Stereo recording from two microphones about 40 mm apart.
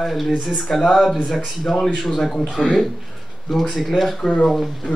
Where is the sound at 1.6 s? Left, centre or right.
Centre.